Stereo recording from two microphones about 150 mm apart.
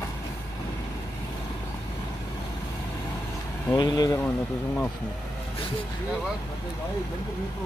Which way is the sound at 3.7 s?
25° left (ahead or behind).